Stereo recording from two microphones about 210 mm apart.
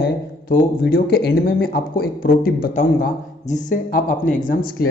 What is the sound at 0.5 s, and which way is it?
A man's voice, 45° left (ahead or behind).